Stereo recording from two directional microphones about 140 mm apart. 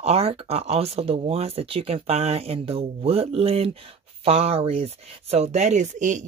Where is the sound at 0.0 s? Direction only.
45° right (ahead or behind).